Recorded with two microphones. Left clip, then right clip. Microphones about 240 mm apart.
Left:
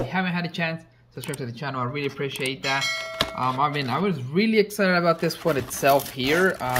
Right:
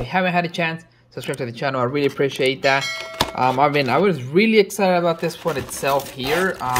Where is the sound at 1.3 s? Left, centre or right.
Centre.